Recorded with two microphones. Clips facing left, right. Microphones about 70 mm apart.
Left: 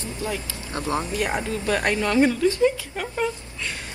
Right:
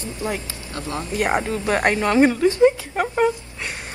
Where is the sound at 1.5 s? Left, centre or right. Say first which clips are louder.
Right 3 dB; right.